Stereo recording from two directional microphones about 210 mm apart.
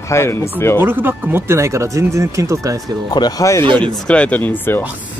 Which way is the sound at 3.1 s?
20° left (ahead or behind).